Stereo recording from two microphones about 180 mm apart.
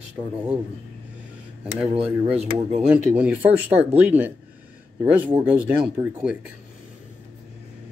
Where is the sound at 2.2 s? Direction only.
35° right (ahead or behind).